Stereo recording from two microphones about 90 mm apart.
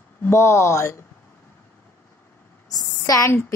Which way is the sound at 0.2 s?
30° left (ahead or behind).